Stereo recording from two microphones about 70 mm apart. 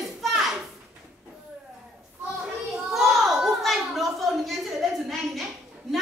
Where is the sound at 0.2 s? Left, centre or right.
Centre.